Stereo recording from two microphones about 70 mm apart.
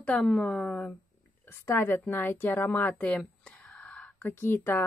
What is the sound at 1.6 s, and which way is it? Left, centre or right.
Speech, left.